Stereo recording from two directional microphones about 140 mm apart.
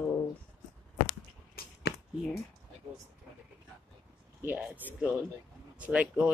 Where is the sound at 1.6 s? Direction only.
90° left.